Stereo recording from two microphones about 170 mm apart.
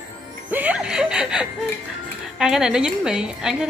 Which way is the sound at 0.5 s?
10° right (ahead or behind).